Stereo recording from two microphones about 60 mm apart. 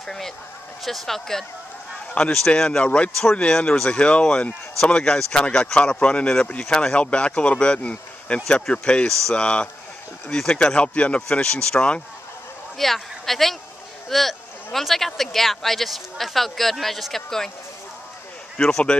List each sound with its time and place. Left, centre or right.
0.0 s speech: centre
12.7 s speech: centre
18.6 s speech: centre